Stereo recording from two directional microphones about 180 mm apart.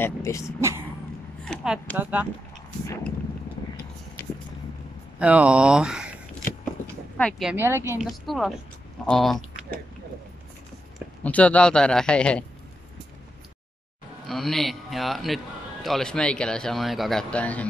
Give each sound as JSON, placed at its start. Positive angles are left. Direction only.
{"t": 0.0, "sound": "speech", "side_deg": 15}
{"t": 0.6, "sound": "speech", "side_deg": -15}
{"t": 1.4, "sound": "speech", "side_deg": 0}
{"t": 5.2, "sound": "speech", "side_deg": -5}
{"t": 7.2, "sound": "a man's voice", "side_deg": 5}
{"t": 7.5, "sound": "speech", "side_deg": -15}
{"t": 8.0, "sound": "a man's voice", "side_deg": 0}
{"t": 11.0, "sound": "a man's voice", "side_deg": 5}
{"t": 14.2, "sound": "a man's voice", "side_deg": 0}